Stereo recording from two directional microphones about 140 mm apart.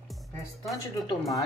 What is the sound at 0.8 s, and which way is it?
Speech, 25° left (ahead or behind).